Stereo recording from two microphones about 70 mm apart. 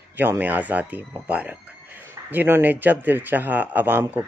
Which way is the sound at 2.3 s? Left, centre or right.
Right.